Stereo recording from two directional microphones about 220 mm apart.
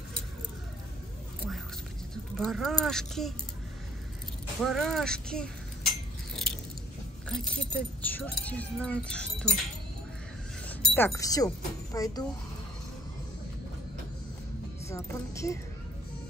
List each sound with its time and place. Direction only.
2.3 s speech: centre (ahead or behind)
4.6 s dishes: centre (ahead or behind)
7.2 s speech: 5° left (ahead or behind)
10.7 s speech: 10° left (ahead or behind)
14.9 s music: 15° left (ahead or behind)